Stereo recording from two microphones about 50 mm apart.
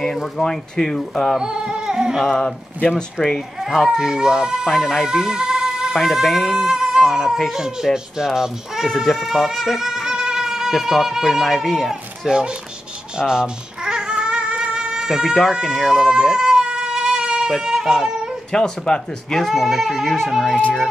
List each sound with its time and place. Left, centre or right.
0.0 s speech: centre
1.4 s a sound: centre
2.3 s speech: left
3.2 s speech: centre
3.9 s speech: centre
7.5 s a sound: centre
8.3 s speech: centre
13.2 s music: centre
15.6 s baby cry: centre
17.5 s a sound: centre
18.5 s speech: centre
19.4 s speech: centre